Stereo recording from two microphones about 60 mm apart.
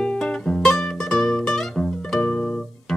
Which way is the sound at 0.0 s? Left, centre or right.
Centre.